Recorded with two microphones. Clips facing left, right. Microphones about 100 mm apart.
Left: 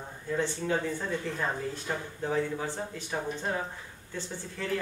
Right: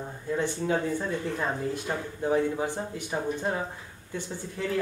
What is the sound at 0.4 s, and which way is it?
Speech, 15° right (ahead or behind).